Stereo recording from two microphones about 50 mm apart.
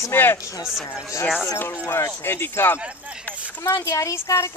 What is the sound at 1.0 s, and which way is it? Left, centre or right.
Speech, left.